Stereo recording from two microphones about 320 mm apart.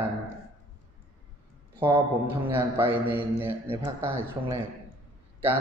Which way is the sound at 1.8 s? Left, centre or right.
Centre.